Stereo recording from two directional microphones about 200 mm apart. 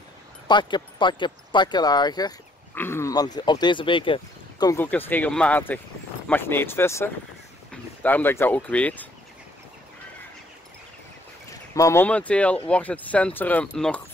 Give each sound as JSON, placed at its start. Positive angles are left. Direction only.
{"t": 0.5, "sound": "speech", "side_deg": 20}
{"t": 11.7, "sound": "speech", "side_deg": 15}